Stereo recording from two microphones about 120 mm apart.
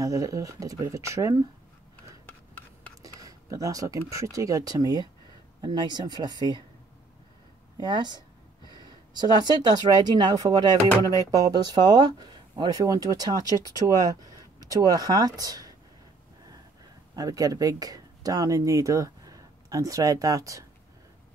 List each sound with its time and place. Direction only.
0.0 s speech: 30° right (ahead or behind)
3.0 s a sound: 30° right (ahead or behind)
4.1 s speech: 25° right (ahead or behind)
7.7 s speech: 35° right (ahead or behind)
17.1 s speech: 30° right (ahead or behind)